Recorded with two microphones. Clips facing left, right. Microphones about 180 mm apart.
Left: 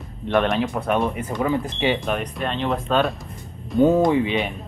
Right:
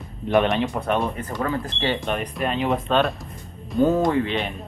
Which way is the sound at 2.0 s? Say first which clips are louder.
Even; centre (ahead or behind).